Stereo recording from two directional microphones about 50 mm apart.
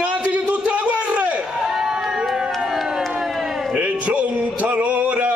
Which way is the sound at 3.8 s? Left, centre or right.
Right.